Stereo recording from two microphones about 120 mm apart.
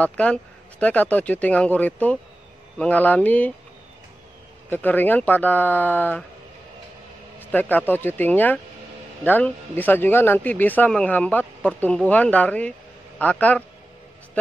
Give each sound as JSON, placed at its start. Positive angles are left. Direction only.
{"t": 0.0, "sound": "speech", "side_deg": 10}
{"t": 4.6, "sound": "speech", "side_deg": 15}
{"t": 7.5, "sound": "speech", "side_deg": 15}